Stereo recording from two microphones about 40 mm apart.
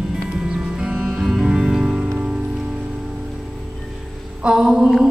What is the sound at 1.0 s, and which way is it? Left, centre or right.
Music, centre.